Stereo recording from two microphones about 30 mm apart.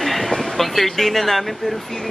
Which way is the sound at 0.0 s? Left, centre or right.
Centre.